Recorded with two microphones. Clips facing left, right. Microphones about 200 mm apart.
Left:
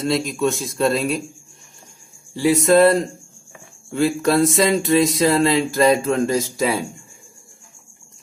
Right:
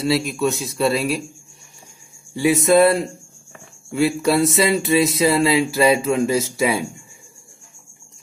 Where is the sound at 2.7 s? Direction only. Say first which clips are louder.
Left 1 dB; 10° right (ahead or behind).